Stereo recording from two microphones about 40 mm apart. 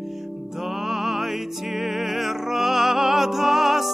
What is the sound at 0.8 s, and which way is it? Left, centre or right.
Music, centre.